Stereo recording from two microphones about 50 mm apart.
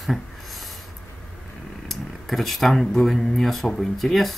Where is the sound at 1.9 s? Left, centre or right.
Centre.